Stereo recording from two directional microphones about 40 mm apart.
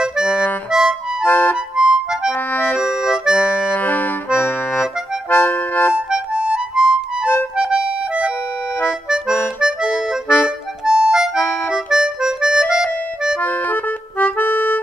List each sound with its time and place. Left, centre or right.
0.0 s music: centre
0.7 s harmonica: centre
1.2 s music: left
1.8 s music: centre
2.5 s music: left
2.8 s music: centre
3.4 s accordion: left
5.3 s music: left
6.3 s harmonica: right
7.5 s accordion: right
9.6 s music: centre
10.2 s music: left
10.9 s music: centre
13.4 s accordion: left